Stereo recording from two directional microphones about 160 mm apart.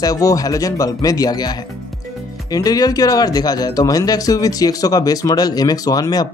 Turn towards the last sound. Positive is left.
turn(degrees=25)  # may be behind; listen again after turning